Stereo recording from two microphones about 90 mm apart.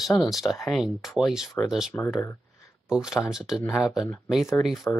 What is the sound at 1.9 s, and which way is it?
Speech, 30° left (ahead or behind).